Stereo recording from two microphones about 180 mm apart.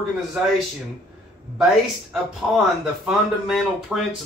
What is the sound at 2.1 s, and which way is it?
Speech, centre (ahead or behind).